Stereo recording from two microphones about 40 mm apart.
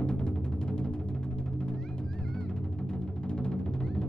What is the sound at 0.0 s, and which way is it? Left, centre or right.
Music, left.